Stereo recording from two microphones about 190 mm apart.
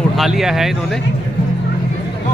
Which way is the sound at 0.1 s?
Centre (ahead or behind).